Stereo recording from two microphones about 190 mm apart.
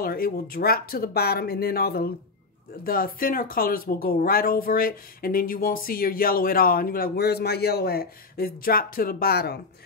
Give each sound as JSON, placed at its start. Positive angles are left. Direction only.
{"t": 0.0, "sound": "speech", "side_deg": 50}